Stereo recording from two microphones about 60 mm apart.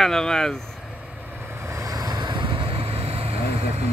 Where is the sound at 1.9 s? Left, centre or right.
Right.